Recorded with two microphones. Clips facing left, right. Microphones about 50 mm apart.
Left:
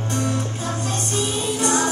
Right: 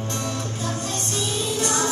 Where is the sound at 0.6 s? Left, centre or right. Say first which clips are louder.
Left 2 dB; left.